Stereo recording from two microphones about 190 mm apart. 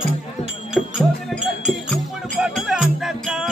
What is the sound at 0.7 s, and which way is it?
Music, centre (ahead or behind).